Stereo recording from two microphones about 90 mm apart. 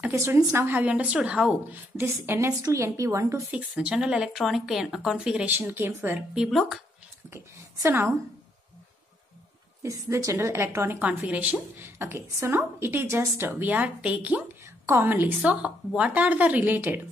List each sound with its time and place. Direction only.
0.1 s a woman's voice: 30° right (ahead or behind)
0.7 s speech: 15° right (ahead or behind)
2.0 s a woman's voice: 25° right (ahead or behind)
3.5 s speech: 10° right (ahead or behind)
5.6 s a woman's voice: 25° right (ahead or behind)
6.3 s speech: 5° right (ahead or behind)
7.2 s a woman's voice: 30° right (ahead or behind)
9.8 s a woman's voice: 35° right (ahead or behind)
11.0 s speech: 15° right (ahead or behind)
12.0 s a woman's voice: 30° right (ahead or behind)
15.5 s speech: 10° right (ahead or behind)